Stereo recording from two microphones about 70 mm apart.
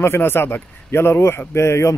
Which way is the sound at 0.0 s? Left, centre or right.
Left.